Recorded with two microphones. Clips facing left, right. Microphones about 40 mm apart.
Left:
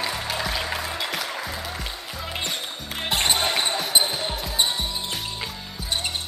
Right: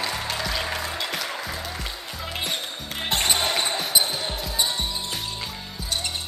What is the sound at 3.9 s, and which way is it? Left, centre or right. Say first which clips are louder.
Basketball bounce: left 2 dB; left.